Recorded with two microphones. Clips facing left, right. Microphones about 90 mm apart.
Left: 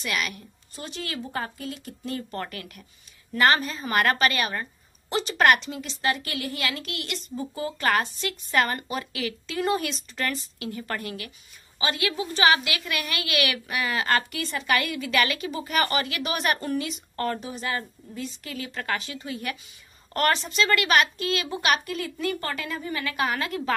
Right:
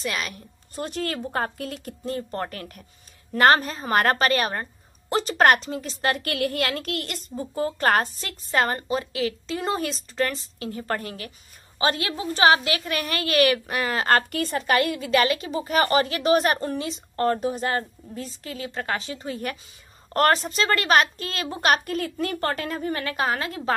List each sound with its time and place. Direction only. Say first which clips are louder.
0.0 s a woman's voice: even; 35° right (ahead or behind)
0.7 s speech: right 6 dB; 50° right (ahead or behind)
2.0 s a woman's voice: right 3 dB; 35° right (ahead or behind)
17.4 s a woman's voice: right 6 dB; 45° right (ahead or behind); by 23.7 s 25° right (ahead or behind)